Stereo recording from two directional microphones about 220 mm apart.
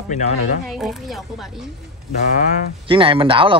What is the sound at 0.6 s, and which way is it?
Speech, centre (ahead or behind).